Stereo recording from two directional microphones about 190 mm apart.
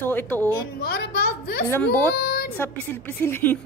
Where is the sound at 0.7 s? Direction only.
55° left (ahead or behind).